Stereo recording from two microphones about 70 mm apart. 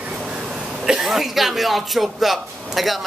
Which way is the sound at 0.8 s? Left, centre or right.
Centre.